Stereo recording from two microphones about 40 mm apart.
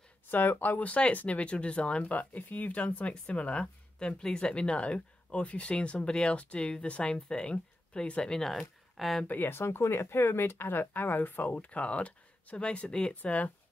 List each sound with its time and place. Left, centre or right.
0.3 s speech: left
0.8 s speech: left
4.1 s speech: centre
8.4 s speech: centre
9.5 s speech: left
11.5 s speech: left
13.1 s speech: left